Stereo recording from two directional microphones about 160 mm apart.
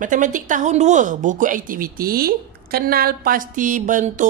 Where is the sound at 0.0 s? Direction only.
55° right (ahead or behind).